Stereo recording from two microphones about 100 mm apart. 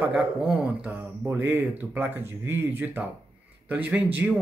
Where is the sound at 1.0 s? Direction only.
25° right (ahead or behind).